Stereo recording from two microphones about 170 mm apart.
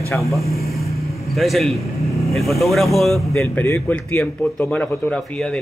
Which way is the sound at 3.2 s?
15° left (ahead or behind).